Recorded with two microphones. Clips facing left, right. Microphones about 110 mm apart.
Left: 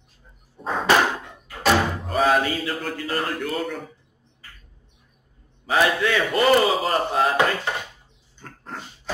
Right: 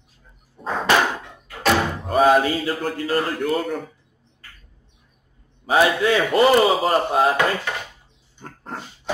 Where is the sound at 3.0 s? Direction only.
10° right (ahead or behind).